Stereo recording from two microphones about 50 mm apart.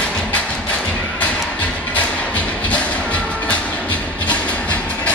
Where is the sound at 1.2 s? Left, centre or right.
Left.